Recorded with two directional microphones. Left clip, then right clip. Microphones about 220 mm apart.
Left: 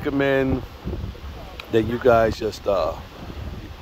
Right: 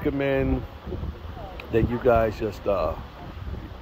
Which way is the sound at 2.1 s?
20° left (ahead or behind).